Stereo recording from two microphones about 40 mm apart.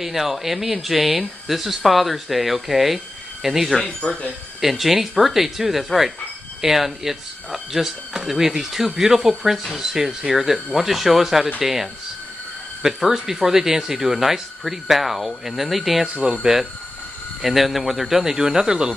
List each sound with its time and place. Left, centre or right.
0.0 s speech: centre
4.0 s speech: left
4.6 s speech: centre
17.4 s speech: centre